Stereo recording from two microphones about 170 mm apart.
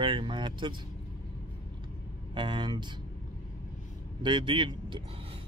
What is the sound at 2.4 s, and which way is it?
Speech, 30° right (ahead or behind).